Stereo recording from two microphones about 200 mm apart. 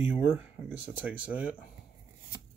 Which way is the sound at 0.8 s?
10° right (ahead or behind).